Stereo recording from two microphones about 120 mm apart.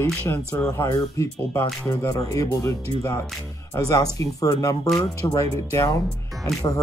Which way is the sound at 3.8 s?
30° left (ahead or behind).